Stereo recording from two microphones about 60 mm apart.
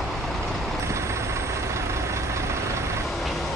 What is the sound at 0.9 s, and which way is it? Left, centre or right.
Vehicle, right.